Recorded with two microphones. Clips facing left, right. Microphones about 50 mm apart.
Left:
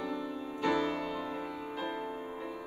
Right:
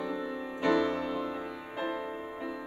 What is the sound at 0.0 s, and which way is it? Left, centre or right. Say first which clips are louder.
Music: right 2 dB; centre.